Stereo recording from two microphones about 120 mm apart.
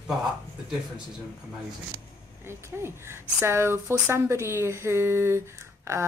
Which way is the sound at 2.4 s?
20° right (ahead or behind).